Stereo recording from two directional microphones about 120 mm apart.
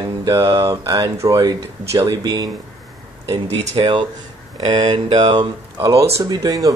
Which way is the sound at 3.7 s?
45° right (ahead or behind).